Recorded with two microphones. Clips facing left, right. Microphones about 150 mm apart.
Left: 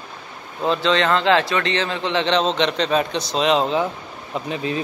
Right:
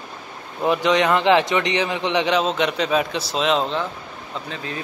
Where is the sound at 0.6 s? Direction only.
15° right (ahead or behind); by 3.8 s centre (ahead or behind).